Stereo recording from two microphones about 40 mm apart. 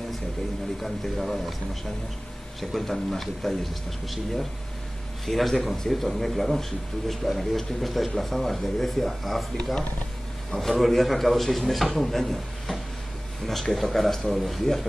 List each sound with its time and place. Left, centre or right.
0.8 s speech: centre
2.6 s speech: centre
10.5 s speech: centre